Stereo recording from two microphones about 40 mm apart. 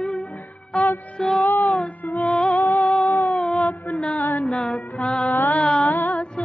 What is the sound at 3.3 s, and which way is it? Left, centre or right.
Music, left.